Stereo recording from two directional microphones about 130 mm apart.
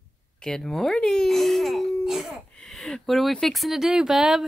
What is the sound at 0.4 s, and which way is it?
Speech, 5° left (ahead or behind).